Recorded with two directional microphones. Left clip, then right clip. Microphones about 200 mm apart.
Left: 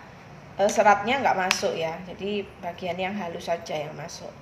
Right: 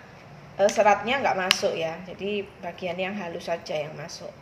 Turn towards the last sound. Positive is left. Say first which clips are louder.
# right 1 dB
turn(degrees=-10)  # may be behind; listen again after turning